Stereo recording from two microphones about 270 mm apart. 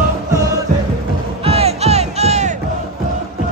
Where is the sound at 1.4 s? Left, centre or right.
Right.